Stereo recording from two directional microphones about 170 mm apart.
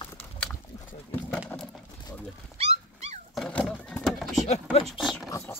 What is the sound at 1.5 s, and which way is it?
Horse, 10° left (ahead or behind).